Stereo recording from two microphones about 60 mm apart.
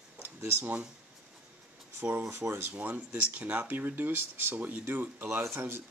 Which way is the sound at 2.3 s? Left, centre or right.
Right.